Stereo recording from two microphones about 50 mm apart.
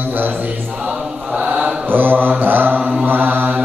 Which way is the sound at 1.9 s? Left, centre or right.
Right.